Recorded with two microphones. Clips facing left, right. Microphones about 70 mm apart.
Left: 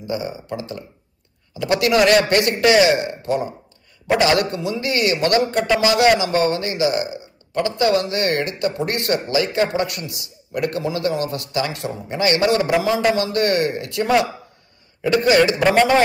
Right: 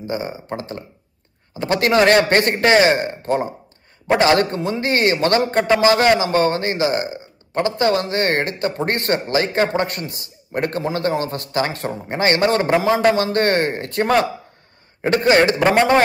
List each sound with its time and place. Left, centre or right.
0.0 s a man's voice: right